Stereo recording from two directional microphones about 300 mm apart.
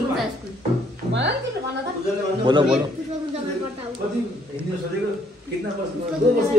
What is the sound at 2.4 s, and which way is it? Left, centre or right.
Speech, centre.